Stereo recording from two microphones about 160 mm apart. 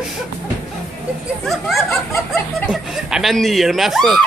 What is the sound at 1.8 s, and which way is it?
Snicker, 15° left (ahead or behind).